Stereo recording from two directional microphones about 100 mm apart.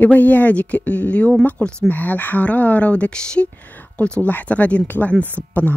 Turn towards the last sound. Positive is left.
turn(degrees=15)  # may be behind; listen again after turning